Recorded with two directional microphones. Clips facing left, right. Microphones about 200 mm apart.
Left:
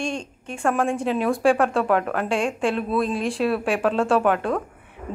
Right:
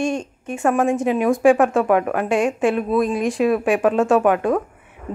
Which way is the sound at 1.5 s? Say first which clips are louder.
Right 4 dB; 5° right (ahead or behind).